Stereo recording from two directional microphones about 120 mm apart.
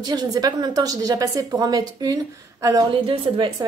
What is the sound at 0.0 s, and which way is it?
A woman's voice, 35° right (ahead or behind).